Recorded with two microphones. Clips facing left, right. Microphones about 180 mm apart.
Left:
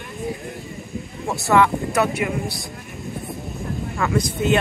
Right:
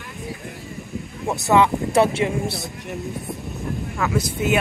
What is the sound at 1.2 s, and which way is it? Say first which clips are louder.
Speech: even; 20° right (ahead or behind).